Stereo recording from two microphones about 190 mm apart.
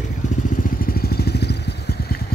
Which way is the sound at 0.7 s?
50° left (ahead or behind).